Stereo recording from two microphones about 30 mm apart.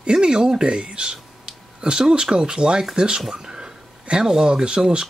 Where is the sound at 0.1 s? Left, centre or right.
Right.